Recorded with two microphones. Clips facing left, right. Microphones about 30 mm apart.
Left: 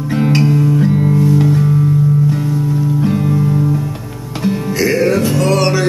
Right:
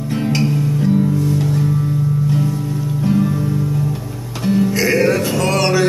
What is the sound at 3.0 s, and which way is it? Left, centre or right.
Music, left.